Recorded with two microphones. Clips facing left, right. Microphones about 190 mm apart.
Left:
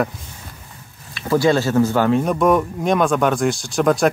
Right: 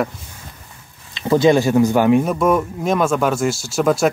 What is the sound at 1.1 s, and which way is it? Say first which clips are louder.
Speech: right 3 dB; 20° right (ahead or behind).